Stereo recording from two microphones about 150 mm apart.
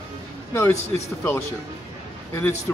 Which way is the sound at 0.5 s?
15° left (ahead or behind).